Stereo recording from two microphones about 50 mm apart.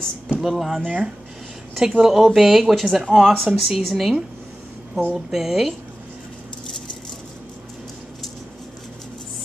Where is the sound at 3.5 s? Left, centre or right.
Centre.